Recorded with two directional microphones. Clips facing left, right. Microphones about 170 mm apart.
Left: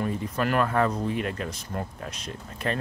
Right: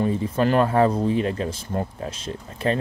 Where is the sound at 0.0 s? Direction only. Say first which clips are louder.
Right 6 dB; 25° right (ahead or behind).